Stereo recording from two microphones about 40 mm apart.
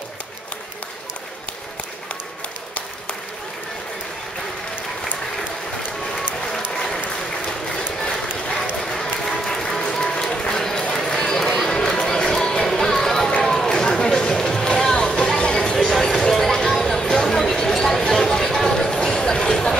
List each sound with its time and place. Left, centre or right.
8.0 s run: centre
8.8 s applause: centre
10.6 s run: centre
11.7 s music: centre
13.4 s run: centre
13.7 s chatter: centre
14.3 s music: centre
15.3 s a sound: left